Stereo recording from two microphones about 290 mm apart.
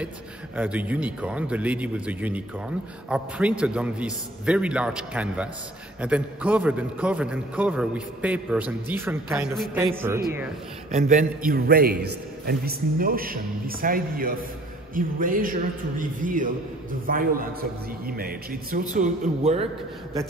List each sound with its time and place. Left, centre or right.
0.6 s a man's voice: centre
10.9 s a man's voice: right